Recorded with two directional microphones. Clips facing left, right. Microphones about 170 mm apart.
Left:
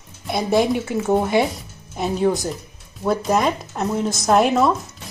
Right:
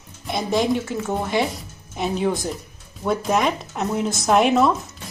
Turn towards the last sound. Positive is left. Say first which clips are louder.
# left 1 dB
turn(degrees=0)  # may be behind; listen again after turning